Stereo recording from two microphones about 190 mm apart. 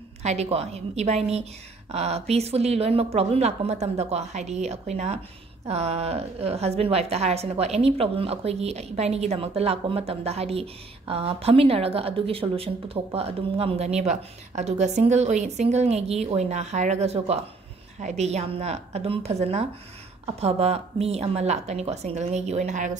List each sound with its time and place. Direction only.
0.2 s a woman's voice: 35° right (ahead or behind)